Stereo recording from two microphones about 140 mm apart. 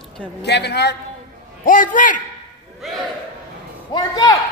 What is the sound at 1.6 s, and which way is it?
Speech, 75° left (ahead or behind).